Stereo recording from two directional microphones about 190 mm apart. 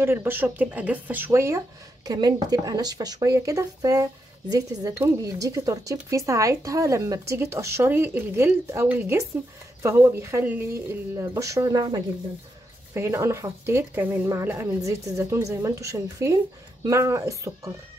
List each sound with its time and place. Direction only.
0.0 s speech: 10° right (ahead or behind)